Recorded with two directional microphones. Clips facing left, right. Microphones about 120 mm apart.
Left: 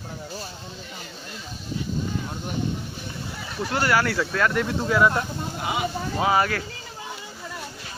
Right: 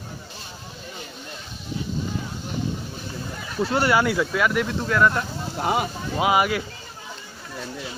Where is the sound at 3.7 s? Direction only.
20° right (ahead or behind); by 4.7 s 5° right (ahead or behind).